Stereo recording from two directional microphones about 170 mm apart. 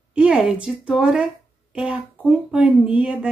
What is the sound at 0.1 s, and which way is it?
Speech, 5° right (ahead or behind).